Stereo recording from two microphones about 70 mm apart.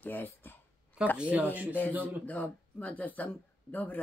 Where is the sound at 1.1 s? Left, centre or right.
Centre.